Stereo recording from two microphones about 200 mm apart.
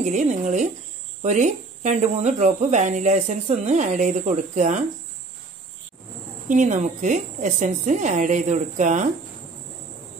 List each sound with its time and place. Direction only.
0.0 s speech: 35° right (ahead or behind)
6.5 s speech: 40° right (ahead or behind)